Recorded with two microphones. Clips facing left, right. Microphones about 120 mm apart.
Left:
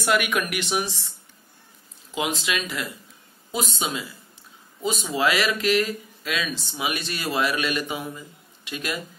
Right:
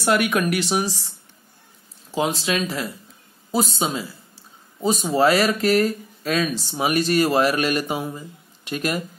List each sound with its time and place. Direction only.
0.0 s speech: 35° right (ahead or behind)